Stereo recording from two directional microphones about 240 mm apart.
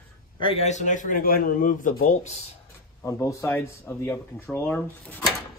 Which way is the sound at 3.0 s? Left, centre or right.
Centre.